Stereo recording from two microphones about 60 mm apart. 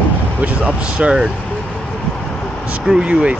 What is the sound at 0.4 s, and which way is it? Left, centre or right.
Speech, right.